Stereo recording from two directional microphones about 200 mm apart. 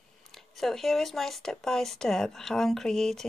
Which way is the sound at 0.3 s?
Centre (ahead or behind).